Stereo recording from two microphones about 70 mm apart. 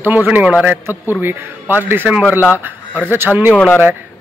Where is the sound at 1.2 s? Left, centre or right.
Right.